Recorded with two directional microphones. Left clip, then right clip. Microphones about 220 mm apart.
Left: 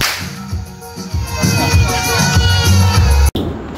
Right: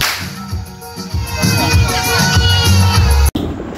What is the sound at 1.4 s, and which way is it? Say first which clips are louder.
Music: right 1 dB; 35° left (ahead or behind).